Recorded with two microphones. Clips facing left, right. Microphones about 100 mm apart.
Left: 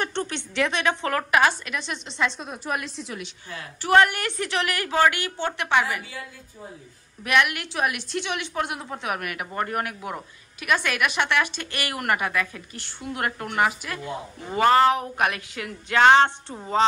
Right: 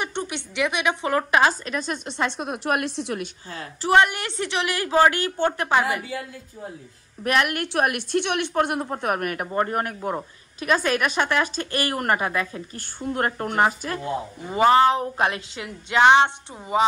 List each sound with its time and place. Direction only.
0.0 s a woman's voice: 15° right (ahead or behind); by 3.3 s 65° right (ahead or behind)
3.4 s a woman's voice: 30° right (ahead or behind)
3.9 s a woman's voice: 20° right (ahead or behind)
7.2 s a woman's voice: 40° right (ahead or behind)
7.6 s a woman's voice: 55° right (ahead or behind)
9.5 s a woman's voice: 30° right (ahead or behind)
14.5 s speech: 15° right (ahead or behind)
14.9 s a woman's voice: 30° right (ahead or behind); by 16.8 s 10° right (ahead or behind)